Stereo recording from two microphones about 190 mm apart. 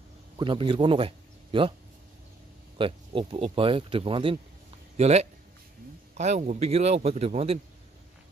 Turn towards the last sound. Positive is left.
turn(degrees=-30)  # may be behind; listen again after turning